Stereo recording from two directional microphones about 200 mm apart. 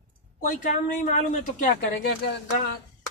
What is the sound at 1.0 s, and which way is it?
Speech, 35° left (ahead or behind).